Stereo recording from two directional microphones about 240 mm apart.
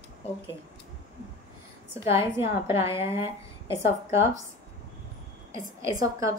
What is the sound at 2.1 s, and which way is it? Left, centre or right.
Speech, centre.